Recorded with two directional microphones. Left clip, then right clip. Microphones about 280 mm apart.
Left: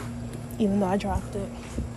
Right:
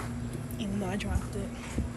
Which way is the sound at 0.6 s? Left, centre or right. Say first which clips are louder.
Left 10 dB; left.